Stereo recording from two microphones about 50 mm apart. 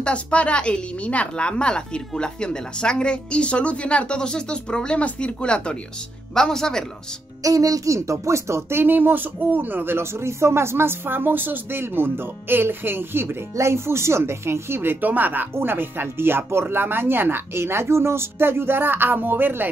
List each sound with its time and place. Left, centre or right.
0.0 s a woman's voice: left
7.8 s speech: right
13.6 s speech: right
15.5 s speech: right